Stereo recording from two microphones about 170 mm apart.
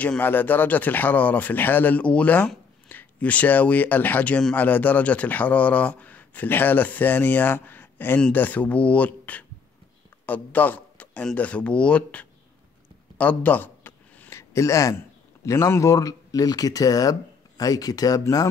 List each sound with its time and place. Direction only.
0.0 s a man's voice: 10° left (ahead or behind)
13.2 s a sound: 10° left (ahead or behind)
15.4 s speech: 15° left (ahead or behind)